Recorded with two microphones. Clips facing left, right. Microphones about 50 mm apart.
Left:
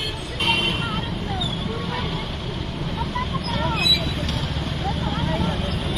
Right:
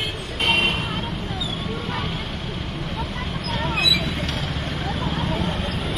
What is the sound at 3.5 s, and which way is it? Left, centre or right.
Vehicle, right.